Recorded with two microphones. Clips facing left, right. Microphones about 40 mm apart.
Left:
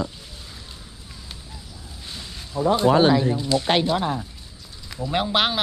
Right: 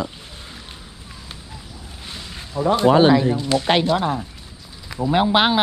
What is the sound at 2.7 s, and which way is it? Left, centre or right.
Speech, right.